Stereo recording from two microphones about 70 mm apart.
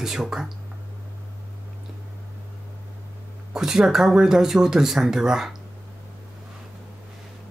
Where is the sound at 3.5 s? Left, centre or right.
Centre.